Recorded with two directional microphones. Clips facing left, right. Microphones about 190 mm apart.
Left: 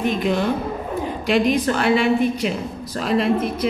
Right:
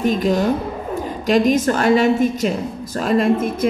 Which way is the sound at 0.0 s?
40° right (ahead or behind).